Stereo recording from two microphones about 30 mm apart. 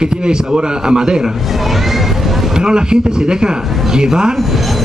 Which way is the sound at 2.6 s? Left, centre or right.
Right.